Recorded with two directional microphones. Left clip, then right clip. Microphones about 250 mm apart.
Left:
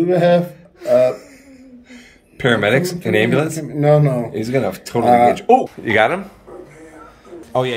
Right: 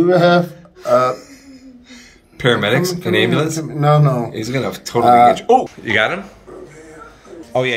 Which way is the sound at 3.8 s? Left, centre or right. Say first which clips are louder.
Left 1 dB; right.